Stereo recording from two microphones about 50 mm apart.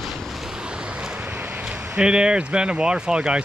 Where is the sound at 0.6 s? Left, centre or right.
Centre.